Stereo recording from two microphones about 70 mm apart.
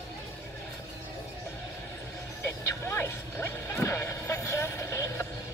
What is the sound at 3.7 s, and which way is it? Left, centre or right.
Vehicle, left.